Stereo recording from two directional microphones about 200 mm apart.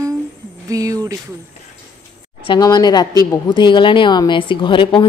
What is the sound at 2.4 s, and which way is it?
Speech, 20° left (ahead or behind).